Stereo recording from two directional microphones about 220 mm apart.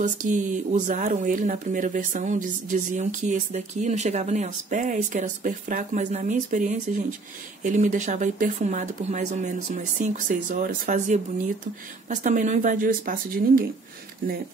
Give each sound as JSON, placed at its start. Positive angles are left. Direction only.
{"t": 0.3, "sound": "speech", "side_deg": -35}